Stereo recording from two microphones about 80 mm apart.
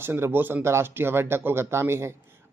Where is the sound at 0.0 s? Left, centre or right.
Right.